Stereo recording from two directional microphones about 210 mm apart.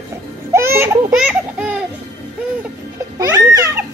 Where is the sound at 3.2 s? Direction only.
15° right (ahead or behind).